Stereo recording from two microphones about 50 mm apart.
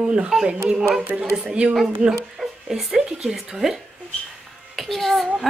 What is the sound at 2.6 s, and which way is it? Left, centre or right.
A woman's voice, centre.